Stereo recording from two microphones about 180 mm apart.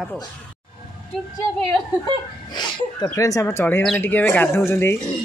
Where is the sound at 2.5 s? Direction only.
20° left (ahead or behind).